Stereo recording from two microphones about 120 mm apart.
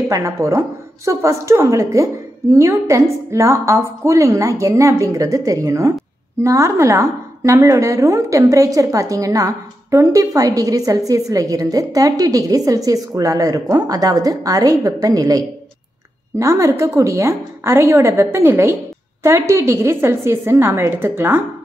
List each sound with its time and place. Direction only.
0.1 s a woman's voice: 25° right (ahead or behind)